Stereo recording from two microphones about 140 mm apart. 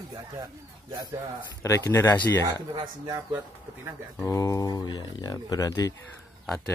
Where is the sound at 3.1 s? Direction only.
25° right (ahead or behind).